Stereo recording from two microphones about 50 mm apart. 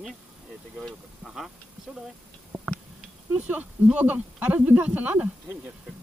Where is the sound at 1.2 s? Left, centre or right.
Centre.